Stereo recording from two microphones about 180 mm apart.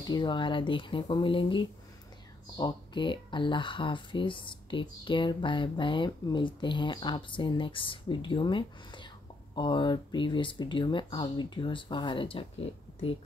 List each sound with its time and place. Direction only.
0.0 s speech: 25° left (ahead or behind)